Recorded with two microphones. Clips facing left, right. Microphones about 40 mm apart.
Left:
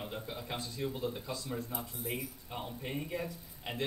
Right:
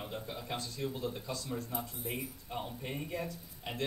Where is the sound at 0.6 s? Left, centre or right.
Centre.